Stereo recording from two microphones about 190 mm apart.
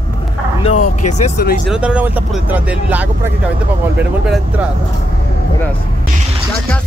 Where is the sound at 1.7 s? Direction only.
5° right (ahead or behind).